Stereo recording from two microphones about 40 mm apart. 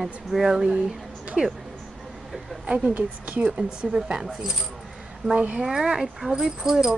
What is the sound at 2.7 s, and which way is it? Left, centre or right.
Speech, right.